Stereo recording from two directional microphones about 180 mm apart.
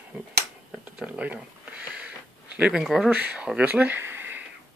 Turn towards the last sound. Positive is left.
turn(degrees=-10)  # may be behind; listen again after turning